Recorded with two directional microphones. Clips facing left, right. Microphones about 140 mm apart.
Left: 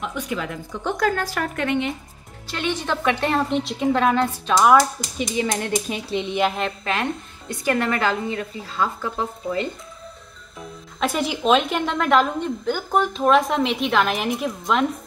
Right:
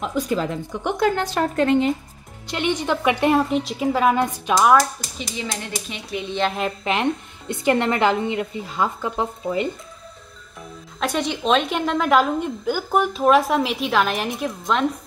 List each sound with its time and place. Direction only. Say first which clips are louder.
0.0 s speech: right 5 dB; 35° right (ahead or behind)
0.7 s speech: even; 20° right (ahead or behind)
2.4 s a woman's voice: right 3 dB; 20° right (ahead or behind)
3.3 s a woman's voice: right 2 dB; centre (ahead or behind)
5.5 s speech: left 6 dB; 55° left (ahead or behind)
6.0 s speech: left 3 dB; 25° left (ahead or behind)
6.8 s speech: right 3 dB; 20° right (ahead or behind)
11.0 s a woman's voice: even; 5° left (ahead or behind)